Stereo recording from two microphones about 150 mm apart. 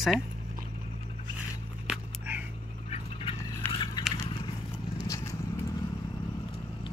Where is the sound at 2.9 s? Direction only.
40° left (ahead or behind).